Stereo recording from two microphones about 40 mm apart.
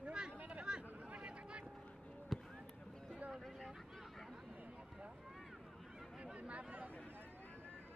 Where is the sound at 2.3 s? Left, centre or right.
Centre.